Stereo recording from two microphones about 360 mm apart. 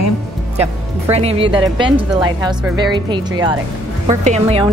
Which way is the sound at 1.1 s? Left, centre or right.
Centre.